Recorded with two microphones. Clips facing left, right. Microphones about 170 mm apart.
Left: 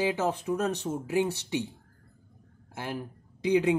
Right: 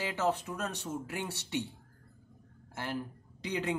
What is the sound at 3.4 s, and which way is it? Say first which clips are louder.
Speech: left 10 dB; 15° left (ahead or behind).